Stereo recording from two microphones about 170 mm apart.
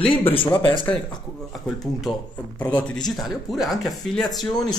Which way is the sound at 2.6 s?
20° left (ahead or behind).